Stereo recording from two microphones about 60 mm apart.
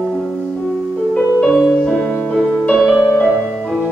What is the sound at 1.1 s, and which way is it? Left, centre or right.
Music, left.